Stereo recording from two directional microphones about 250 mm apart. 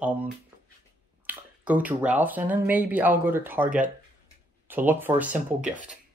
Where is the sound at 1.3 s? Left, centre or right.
Centre.